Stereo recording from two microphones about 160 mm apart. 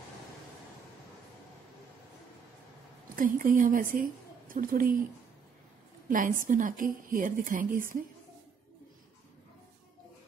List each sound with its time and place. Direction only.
3.2 s a woman's voice: 55° right (ahead or behind)
6.0 s a woman's voice: 55° right (ahead or behind)